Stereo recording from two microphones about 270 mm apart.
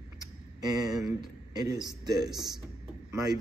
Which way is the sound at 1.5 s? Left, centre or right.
Centre.